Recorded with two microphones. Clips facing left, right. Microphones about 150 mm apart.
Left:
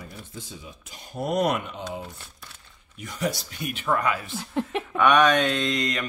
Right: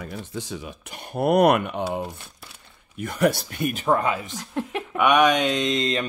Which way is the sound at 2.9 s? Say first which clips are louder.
Right 7 dB; 60° right (ahead or behind).